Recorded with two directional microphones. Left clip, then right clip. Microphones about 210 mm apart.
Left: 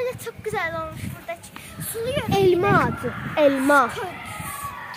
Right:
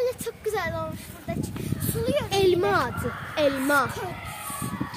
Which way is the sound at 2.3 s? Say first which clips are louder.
Left 5 dB; 35° left (ahead or behind).